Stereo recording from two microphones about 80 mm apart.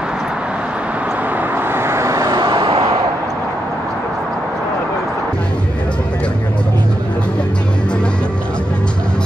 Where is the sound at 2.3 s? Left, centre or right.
Right.